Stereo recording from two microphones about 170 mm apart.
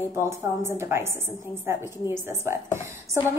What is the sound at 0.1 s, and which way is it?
A woman's voice, 15° right (ahead or behind).